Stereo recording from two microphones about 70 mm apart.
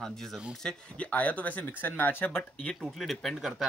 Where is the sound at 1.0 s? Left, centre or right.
Left.